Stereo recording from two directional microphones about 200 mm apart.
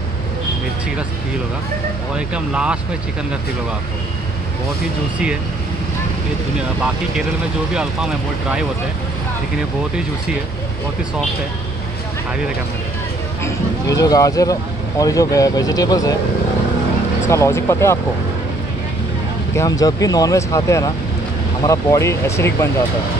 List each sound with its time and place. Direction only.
2.1 s speech: 5° right (ahead or behind)
7.7 s speech: 5° right (ahead or behind)
13.4 s speech: 15° left (ahead or behind)
17.3 s speech: 15° left (ahead or behind)
19.5 s speech: 15° left (ahead or behind)